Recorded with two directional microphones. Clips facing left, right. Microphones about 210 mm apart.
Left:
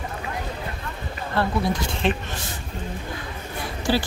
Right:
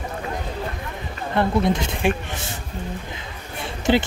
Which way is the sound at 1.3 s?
20° right (ahead or behind).